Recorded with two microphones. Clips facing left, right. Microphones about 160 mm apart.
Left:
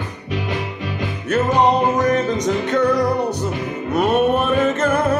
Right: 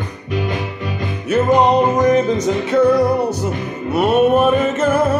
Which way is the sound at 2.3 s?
10° right (ahead or behind).